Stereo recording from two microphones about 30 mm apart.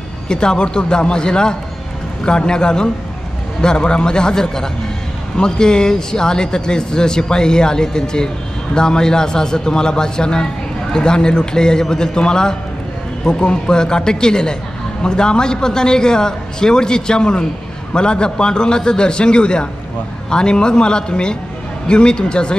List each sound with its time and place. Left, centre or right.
0.3 s a man's voice: left